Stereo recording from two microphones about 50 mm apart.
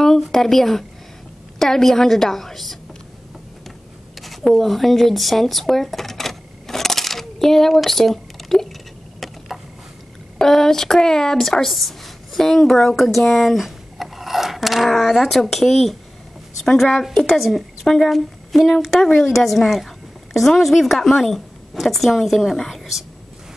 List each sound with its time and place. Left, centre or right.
0.0 s a woman's voice: centre
4.2 s a sound: centre
10.4 s a woman's voice: centre
18.9 s a woman's voice: centre
19.2 s a woman's voice: centre